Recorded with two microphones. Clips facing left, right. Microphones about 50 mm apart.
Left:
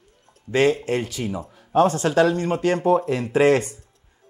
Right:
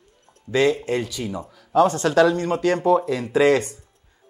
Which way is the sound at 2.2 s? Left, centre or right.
Left.